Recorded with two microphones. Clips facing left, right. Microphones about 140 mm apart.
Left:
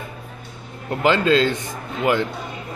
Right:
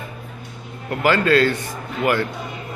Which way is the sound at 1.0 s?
20° left (ahead or behind).